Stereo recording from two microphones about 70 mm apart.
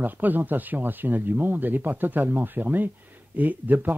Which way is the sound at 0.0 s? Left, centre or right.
Right.